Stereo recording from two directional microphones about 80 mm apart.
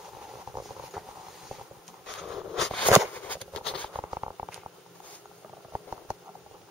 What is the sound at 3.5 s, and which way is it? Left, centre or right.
Patter, centre.